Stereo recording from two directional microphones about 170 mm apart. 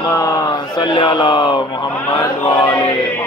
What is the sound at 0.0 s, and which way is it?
Speech, 20° left (ahead or behind).